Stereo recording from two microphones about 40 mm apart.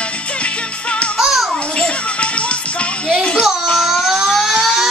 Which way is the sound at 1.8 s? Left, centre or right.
Left.